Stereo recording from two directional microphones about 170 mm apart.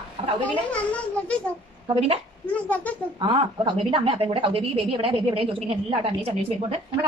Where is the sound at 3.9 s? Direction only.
30° right (ahead or behind).